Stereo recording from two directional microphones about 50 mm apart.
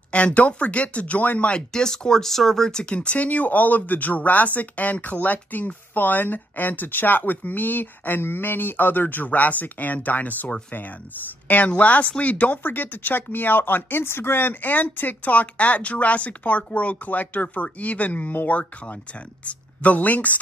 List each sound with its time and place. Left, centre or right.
0.1 s speech: left
1.5 s speech: centre
2.8 s speech: left